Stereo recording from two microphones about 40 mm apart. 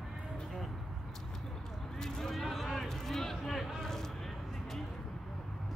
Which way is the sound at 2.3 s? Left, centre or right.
Centre.